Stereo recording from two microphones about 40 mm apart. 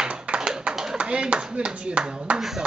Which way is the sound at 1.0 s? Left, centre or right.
Right.